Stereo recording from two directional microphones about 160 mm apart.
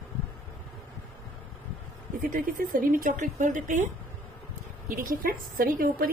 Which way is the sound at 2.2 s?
60° right (ahead or behind).